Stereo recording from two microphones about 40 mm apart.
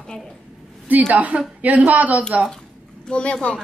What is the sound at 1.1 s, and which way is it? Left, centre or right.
Speech, right.